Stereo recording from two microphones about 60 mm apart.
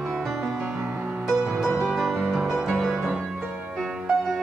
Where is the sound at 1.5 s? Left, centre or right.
Centre.